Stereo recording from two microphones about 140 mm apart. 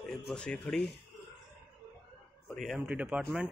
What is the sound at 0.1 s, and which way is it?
Speech, 5° left (ahead or behind).